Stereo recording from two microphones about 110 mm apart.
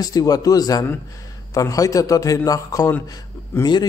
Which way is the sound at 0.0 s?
35° left (ahead or behind).